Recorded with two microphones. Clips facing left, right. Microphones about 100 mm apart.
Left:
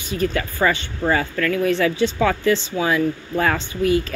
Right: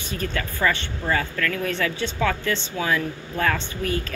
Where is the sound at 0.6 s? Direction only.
45° left (ahead or behind).